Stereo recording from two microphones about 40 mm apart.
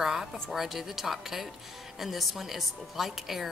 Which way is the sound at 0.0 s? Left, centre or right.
Centre.